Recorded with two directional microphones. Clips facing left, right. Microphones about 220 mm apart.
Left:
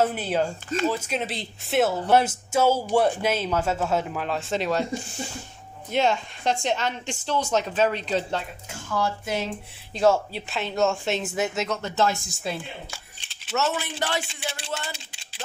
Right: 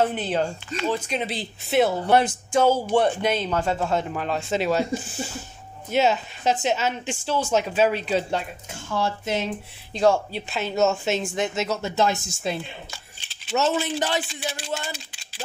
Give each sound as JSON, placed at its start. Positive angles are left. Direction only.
{"t": 0.0, "sound": "a woman's voice", "side_deg": 5}
{"t": 8.9, "sound": "speech", "side_deg": -25}
{"t": 9.9, "sound": "speech", "side_deg": 0}
{"t": 13.6, "sound": "speech", "side_deg": -20}
{"t": 14.7, "sound": "a sound", "side_deg": -15}